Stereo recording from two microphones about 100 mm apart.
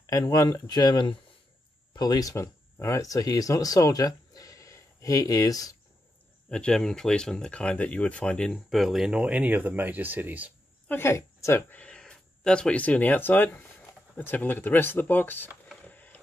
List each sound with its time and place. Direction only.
0.0 s speech: 35° left (ahead or behind)
6.5 s speech: 10° left (ahead or behind); by 10.5 s 15° right (ahead or behind)
10.9 s a woman's voice: 25° left (ahead or behind)
11.7 s speech: 10° left (ahead or behind)
15.8 s a sound: 15° left (ahead or behind)